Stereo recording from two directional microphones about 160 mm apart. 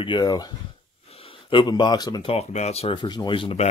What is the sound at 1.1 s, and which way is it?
Speech, 35° left (ahead or behind).